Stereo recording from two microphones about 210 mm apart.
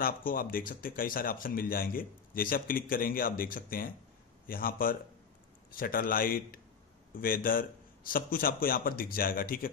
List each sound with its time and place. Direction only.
0.0 s speech: 40° left (ahead or behind)